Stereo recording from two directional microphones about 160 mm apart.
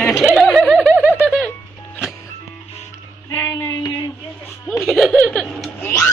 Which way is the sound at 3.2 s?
20° left (ahead or behind).